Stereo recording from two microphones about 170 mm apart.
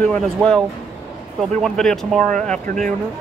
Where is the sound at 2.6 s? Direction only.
50° right (ahead or behind).